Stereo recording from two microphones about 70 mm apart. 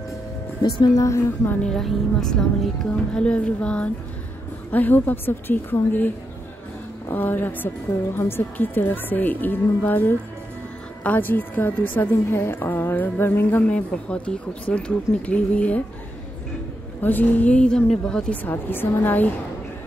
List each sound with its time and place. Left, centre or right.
0.9 s a woman's voice: left
1.6 s a woman's voice: centre
17.0 s a woman's voice: left
18.4 s a woman's voice: left